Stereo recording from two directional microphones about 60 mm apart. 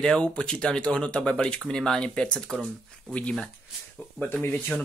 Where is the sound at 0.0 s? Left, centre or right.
Centre.